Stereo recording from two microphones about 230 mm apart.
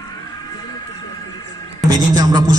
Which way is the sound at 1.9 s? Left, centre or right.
Centre.